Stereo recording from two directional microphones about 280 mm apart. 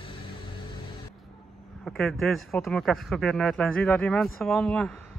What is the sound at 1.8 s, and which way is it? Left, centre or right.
Speech, centre.